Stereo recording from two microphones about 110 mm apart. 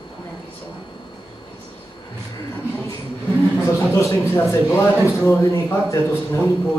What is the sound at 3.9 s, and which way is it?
Speech, 25° left (ahead or behind).